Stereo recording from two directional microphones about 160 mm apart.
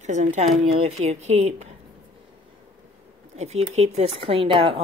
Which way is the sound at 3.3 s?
45° right (ahead or behind).